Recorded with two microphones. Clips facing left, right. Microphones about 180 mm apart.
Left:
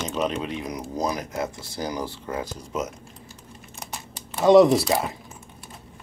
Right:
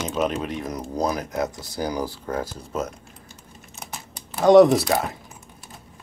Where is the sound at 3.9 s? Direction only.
Centre (ahead or behind).